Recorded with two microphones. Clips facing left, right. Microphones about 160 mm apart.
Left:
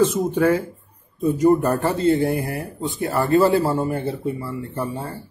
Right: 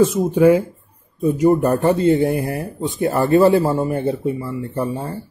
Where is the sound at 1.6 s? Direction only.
20° right (ahead or behind).